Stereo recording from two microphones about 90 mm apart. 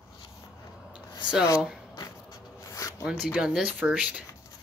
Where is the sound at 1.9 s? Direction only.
45° left (ahead or behind).